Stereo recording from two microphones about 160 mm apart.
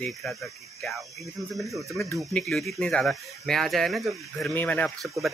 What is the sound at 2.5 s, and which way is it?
Speech, centre (ahead or behind).